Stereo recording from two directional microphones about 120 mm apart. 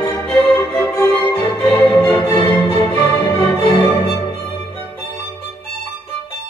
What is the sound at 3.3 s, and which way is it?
Music, 20° left (ahead or behind).